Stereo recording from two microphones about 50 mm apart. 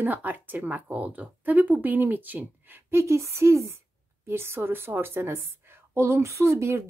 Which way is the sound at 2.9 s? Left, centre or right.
Right.